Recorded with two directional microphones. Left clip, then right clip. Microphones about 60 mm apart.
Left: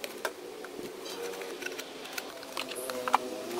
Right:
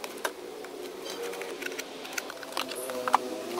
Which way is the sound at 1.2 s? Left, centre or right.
Right.